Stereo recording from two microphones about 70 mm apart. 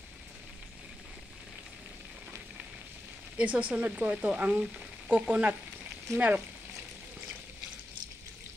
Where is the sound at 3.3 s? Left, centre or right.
Centre.